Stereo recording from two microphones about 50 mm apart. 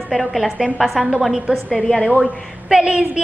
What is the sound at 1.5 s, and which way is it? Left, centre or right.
Speech, right.